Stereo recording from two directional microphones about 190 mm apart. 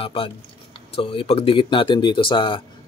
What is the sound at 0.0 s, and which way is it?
Speech, 30° left (ahead or behind).